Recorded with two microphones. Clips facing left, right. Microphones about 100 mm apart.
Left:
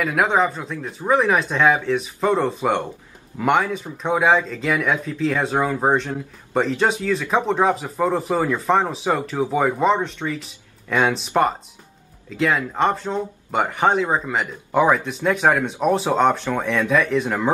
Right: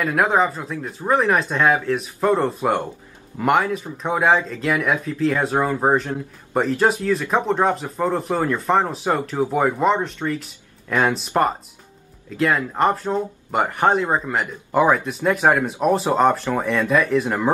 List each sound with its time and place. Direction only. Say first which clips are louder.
0.0 s speech: even; centre (ahead or behind)